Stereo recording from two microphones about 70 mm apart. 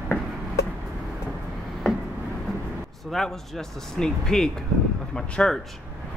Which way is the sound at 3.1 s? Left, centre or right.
Centre.